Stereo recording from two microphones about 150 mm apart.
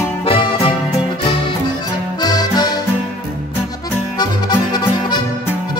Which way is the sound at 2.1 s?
25° left (ahead or behind).